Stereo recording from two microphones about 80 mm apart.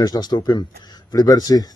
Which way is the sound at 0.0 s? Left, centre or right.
Left.